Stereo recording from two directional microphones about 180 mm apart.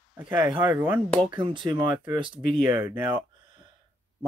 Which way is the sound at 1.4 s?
25° right (ahead or behind).